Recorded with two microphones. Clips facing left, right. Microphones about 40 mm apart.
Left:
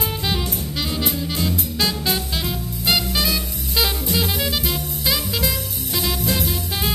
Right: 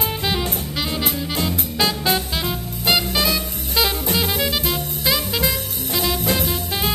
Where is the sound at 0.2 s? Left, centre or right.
Centre.